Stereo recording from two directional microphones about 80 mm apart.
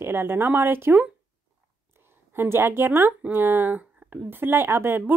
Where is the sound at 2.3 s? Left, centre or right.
Right.